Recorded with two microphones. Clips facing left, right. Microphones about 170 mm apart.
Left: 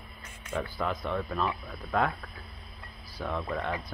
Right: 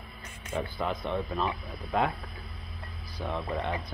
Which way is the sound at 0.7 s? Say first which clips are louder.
Even; centre (ahead or behind).